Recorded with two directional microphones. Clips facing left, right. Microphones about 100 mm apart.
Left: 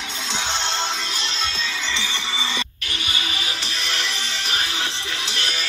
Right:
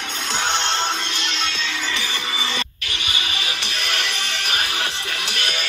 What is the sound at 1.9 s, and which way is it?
Music, 25° left (ahead or behind).